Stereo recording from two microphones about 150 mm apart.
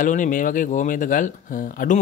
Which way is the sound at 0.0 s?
60° left (ahead or behind).